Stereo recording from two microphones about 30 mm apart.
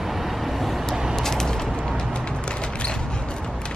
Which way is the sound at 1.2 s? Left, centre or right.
Centre.